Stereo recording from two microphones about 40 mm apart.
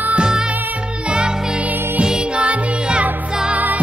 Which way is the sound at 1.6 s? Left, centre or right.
Right.